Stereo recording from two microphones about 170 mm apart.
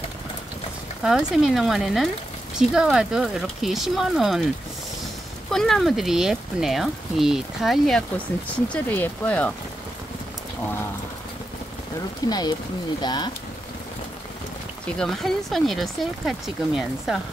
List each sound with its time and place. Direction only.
1.0 s speech: centre (ahead or behind)
5.5 s speech: centre (ahead or behind)
12.3 s speech: 25° left (ahead or behind)
15.0 s speech: centre (ahead or behind)